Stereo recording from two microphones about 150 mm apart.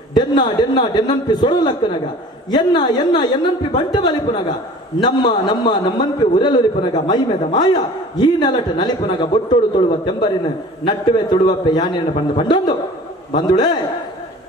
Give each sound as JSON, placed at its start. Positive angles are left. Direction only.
{"t": 0.1, "sound": "a man's voice", "side_deg": 30}